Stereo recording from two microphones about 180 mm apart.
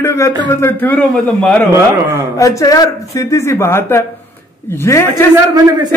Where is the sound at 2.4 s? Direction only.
20° left (ahead or behind).